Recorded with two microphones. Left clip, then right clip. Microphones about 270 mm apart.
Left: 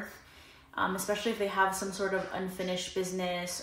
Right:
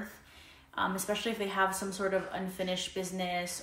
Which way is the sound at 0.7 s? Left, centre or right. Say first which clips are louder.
Left 1 dB; centre.